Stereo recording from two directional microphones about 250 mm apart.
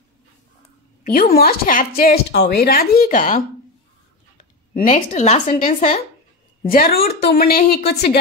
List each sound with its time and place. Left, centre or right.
1.1 s speech: left